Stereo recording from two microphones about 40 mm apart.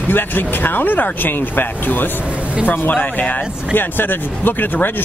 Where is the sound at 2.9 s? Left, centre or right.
Left.